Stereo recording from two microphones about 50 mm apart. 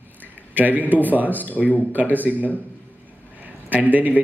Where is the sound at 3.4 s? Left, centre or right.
Right.